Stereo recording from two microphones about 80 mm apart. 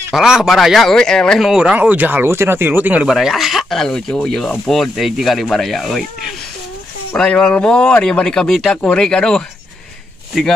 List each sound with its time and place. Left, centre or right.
0.1 s speech: centre
1.4 s speech: centre
1.8 s speech: right
3.1 s speech: centre
3.8 s speech: centre
7.2 s speech: centre